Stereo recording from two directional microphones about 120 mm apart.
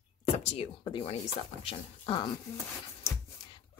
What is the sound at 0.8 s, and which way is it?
A woman's voice, 40° left (ahead or behind).